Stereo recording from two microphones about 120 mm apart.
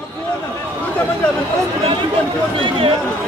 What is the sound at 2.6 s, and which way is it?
Speech, 45° right (ahead or behind).